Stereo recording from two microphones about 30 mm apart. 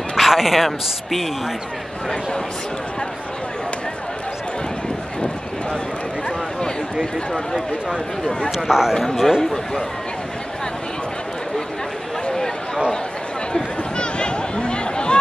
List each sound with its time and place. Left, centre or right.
0.2 s a man's voice: centre
8.5 s a man's voice: centre
8.9 s a man's voice: centre
13.9 s a sound: left